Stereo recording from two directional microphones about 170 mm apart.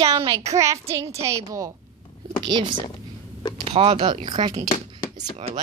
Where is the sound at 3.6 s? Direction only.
35° right (ahead or behind).